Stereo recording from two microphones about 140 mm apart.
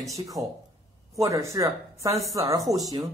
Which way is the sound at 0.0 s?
25° right (ahead or behind).